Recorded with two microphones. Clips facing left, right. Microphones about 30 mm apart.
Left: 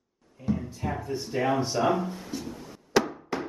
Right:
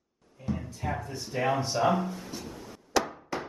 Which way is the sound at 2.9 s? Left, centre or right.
Centre.